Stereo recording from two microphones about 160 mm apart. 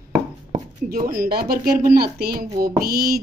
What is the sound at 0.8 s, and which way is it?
Speech, 60° right (ahead or behind).